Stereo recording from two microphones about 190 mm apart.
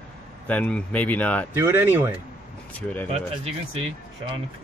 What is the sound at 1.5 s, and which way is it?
Speech, 10° right (ahead or behind).